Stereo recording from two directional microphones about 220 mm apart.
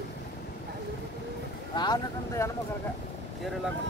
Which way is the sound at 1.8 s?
15° left (ahead or behind).